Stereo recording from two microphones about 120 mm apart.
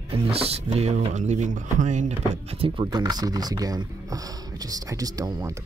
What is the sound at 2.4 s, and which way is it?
Speech, 50° right (ahead or behind).